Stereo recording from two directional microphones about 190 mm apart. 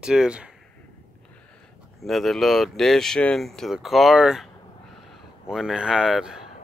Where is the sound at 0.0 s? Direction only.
5° right (ahead or behind).